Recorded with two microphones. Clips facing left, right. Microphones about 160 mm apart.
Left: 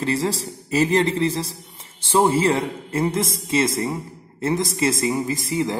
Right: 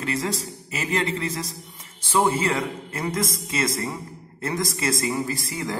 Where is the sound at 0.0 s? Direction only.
30° left (ahead or behind).